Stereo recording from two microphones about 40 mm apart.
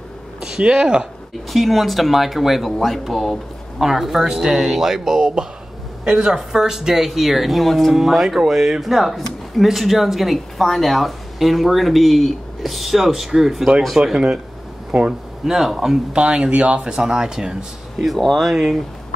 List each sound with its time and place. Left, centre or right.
0.4 s speech: centre
1.5 s speech: centre; by 14.4 s right
15.4 s speech: centre
16.1 s speech: right
18.3 s speech: centre